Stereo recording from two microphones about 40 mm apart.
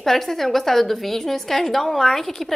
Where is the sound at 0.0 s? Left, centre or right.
Centre.